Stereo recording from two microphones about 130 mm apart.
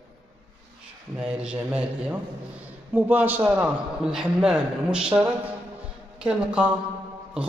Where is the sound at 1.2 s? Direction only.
5° right (ahead or behind).